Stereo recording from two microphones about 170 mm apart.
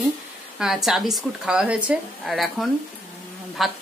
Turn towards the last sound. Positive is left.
turn(degrees=0)  # may be behind; listen again after turning